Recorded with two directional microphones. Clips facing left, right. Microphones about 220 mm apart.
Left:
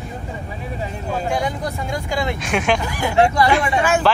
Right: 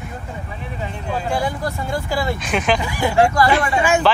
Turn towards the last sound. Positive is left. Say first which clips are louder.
# right 1 dB
turn(degrees=0)  # may be behind; listen again after turning